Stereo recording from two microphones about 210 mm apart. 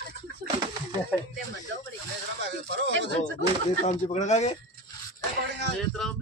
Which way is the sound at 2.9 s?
55° right (ahead or behind).